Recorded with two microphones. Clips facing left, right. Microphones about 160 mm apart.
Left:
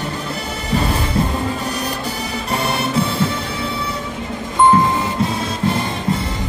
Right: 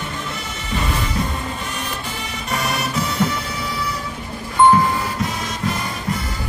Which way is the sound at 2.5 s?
30° left (ahead or behind).